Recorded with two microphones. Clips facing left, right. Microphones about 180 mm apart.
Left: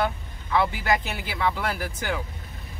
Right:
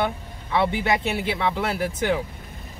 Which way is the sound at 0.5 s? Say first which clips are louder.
Right 2 dB; 25° right (ahead or behind).